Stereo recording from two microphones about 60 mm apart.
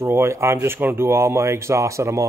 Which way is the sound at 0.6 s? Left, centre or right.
Right.